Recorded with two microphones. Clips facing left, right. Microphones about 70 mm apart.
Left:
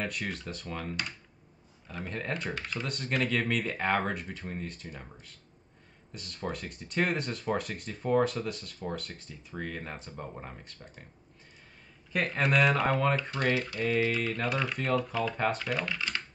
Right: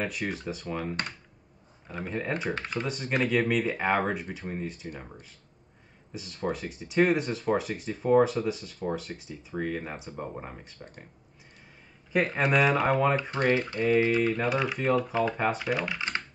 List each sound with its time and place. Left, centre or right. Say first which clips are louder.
0.0 s speech: right 3 dB; centre
1.9 s speech: right 4 dB; centre
6.1 s speech: right 5 dB; centre
12.1 s speech: right 3 dB; centre
14.0 s speech: right 5 dB; centre
14.3 s speech: right 4 dB; centre